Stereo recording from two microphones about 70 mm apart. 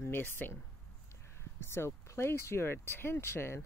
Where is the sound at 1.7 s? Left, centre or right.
Left.